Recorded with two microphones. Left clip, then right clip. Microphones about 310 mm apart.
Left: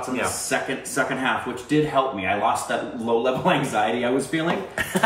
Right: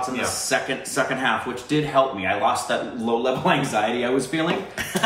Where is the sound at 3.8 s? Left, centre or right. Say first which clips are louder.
Even; centre.